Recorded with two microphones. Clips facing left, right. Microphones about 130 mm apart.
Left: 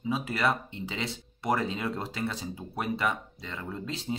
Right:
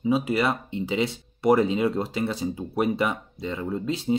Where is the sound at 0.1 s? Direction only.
15° right (ahead or behind).